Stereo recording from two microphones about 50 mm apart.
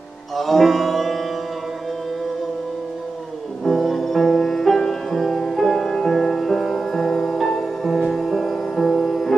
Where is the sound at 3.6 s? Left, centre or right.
Centre.